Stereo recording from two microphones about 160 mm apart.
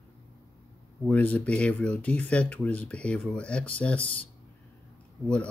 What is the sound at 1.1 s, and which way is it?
Speech, 10° left (ahead or behind).